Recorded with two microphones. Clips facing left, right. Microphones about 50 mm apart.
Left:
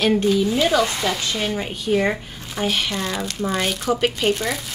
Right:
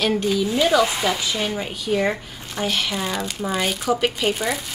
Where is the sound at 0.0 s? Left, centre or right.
Centre.